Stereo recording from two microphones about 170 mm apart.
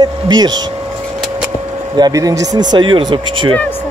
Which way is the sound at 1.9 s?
20° right (ahead or behind).